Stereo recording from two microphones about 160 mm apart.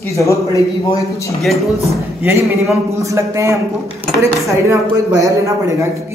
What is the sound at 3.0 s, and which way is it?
A man's voice, 20° right (ahead or behind).